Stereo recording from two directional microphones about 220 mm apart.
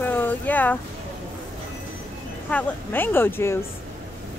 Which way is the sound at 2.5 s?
10° left (ahead or behind).